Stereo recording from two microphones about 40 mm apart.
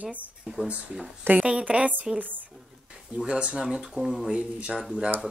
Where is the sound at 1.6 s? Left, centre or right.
Right.